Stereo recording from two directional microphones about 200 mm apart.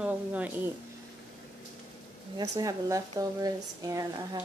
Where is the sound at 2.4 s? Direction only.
20° right (ahead or behind).